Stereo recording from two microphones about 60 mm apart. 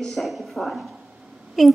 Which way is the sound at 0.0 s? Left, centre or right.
Centre.